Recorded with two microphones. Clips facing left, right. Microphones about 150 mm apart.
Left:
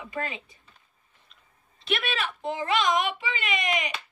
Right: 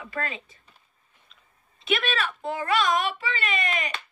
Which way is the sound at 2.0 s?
15° left (ahead or behind).